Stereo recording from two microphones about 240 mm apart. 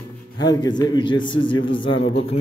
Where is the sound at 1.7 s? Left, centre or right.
Left.